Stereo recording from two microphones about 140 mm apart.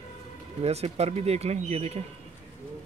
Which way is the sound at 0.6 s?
50° right (ahead or behind).